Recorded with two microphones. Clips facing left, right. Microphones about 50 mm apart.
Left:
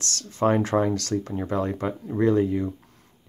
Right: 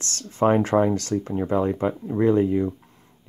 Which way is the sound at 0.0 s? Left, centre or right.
Right.